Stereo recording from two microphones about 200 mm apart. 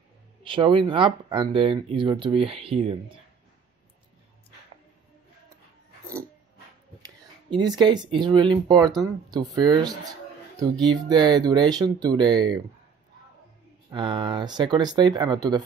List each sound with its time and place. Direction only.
0.4 s speech: 25° right (ahead or behind)
7.4 s speech: 20° right (ahead or behind)
11.1 s speech: 20° right (ahead or behind)
13.8 s speech: 25° right (ahead or behind)